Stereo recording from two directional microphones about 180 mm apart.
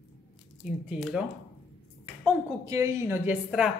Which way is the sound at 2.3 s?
15° right (ahead or behind).